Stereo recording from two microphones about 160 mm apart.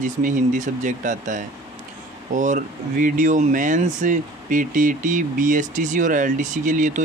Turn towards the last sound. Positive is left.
turn(degrees=-50)  # may be behind; listen again after turning